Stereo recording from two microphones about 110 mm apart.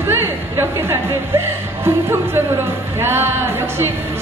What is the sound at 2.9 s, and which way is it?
Speech, 20° right (ahead or behind).